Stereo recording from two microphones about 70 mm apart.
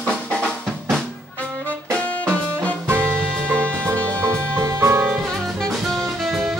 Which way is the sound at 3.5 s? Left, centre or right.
Centre.